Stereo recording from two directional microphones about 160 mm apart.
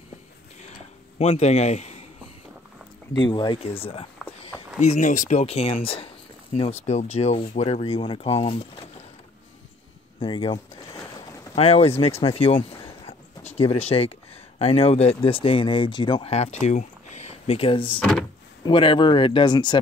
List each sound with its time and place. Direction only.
1.1 s a man's voice: 40° left (ahead or behind)
3.3 s speech: 30° left (ahead or behind)
4.8 s speech: 50° left (ahead or behind)
10.2 s speech: 30° left (ahead or behind)
17.9 s speech: 5° left (ahead or behind)
18.6 s speech: 30° left (ahead or behind)